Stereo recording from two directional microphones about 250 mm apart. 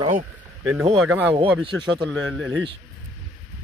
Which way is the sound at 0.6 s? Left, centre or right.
Centre.